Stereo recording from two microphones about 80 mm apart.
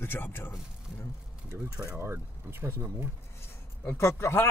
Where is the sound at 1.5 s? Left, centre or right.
Right.